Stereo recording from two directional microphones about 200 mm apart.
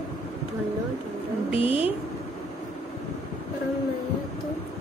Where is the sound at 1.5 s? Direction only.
30° left (ahead or behind).